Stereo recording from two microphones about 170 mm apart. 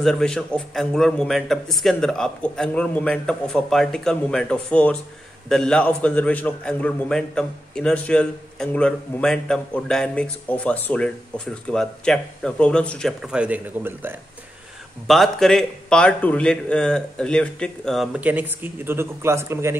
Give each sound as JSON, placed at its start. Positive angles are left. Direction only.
{"t": 0.0, "sound": "a man's voice", "side_deg": 5}
{"t": 15.0, "sound": "a man's voice", "side_deg": 0}